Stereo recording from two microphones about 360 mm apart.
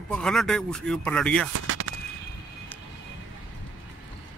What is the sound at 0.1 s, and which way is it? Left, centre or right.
Speech, centre.